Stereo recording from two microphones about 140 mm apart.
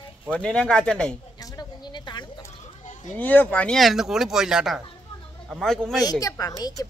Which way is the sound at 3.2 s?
10° left (ahead or behind).